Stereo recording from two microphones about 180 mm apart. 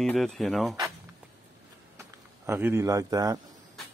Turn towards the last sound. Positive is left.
turn(degrees=-20)  # may be behind; listen again after turning